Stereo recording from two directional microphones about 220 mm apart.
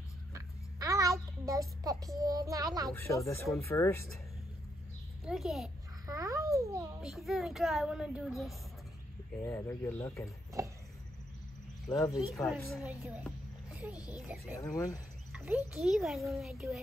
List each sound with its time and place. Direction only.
0.3 s a sound: 15° right (ahead or behind)
2.1 s a child's voice: 15° right (ahead or behind)
2.9 s speech: 10° left (ahead or behind)
5.2 s a woman's voice: centre (ahead or behind)
6.0 s babbling: 15° right (ahead or behind)
7.0 s a woman's voice: centre (ahead or behind)
9.4 s speech: 10° left (ahead or behind)
10.6 s a sound: 15° right (ahead or behind)
11.9 s speech: 20° left (ahead or behind)
12.3 s a woman's voice: centre (ahead or behind)
14.6 s speech: 15° left (ahead or behind)
15.3 s a woman's voice: 5° right (ahead or behind)